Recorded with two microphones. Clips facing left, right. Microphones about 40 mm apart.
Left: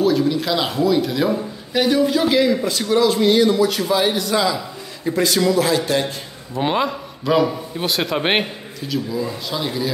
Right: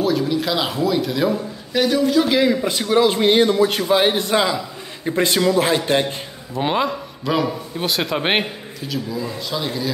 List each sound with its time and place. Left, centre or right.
0.0 s a man's voice: centre
3.0 s a man's voice: right
6.5 s a man's voice: centre